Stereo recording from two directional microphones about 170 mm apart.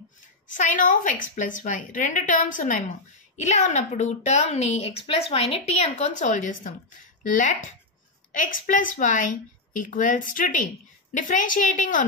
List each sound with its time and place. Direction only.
0.6 s a woman's voice: 50° left (ahead or behind)